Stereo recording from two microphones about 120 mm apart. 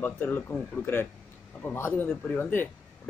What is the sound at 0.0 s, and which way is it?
A man's voice, 15° left (ahead or behind).